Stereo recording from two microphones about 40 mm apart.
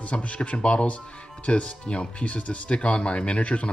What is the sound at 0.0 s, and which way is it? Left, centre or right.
Speech, left.